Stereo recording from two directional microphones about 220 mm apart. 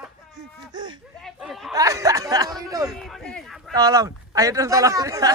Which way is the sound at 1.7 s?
15° right (ahead or behind).